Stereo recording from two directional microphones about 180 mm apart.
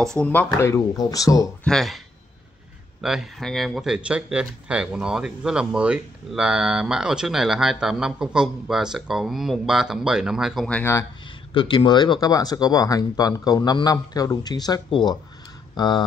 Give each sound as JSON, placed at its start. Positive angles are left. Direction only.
{"t": 0.0, "sound": "speech", "side_deg": 5}
{"t": 1.6, "sound": "speech", "side_deg": 0}
{"t": 3.0, "sound": "speech", "side_deg": 0}
{"t": 11.5, "sound": "speech", "side_deg": 25}